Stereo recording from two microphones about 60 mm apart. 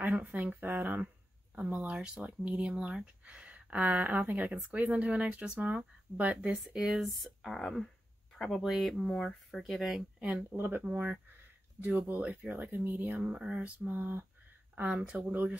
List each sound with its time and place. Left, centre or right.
0.0 s speech: right
6.5 s speech: centre
10.2 s speech: right
13.3 s speech: centre